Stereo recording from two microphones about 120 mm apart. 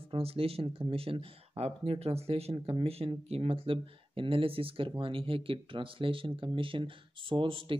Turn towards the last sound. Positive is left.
turn(degrees=-45)  # may be behind; listen again after turning